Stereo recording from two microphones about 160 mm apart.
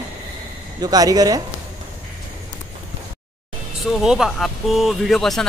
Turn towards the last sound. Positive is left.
turn(degrees=0)  # may be behind; listen again after turning